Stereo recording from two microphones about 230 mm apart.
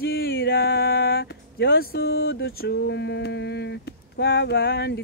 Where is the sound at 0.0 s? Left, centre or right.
Left.